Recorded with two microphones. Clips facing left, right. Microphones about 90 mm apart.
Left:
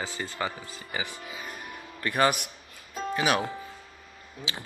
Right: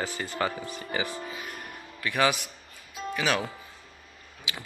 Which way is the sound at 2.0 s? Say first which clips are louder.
Left 1 dB; 35° left (ahead or behind).